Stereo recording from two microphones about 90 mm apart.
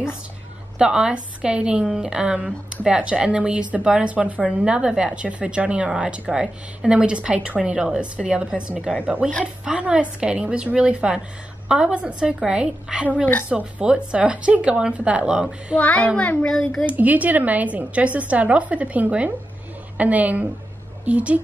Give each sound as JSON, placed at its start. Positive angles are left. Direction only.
{"t": 0.7, "sound": "a woman's voice", "side_deg": -10}
{"t": 15.8, "sound": "a woman's voice", "side_deg": 15}
{"t": 16.8, "sound": "a woman's voice", "side_deg": -20}